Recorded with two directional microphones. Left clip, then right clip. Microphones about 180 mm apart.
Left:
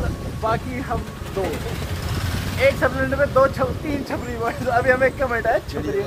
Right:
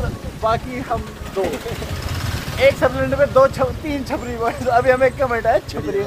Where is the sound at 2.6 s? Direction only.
10° right (ahead or behind).